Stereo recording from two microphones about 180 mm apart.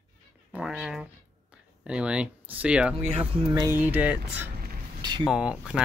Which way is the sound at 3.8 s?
10° right (ahead or behind).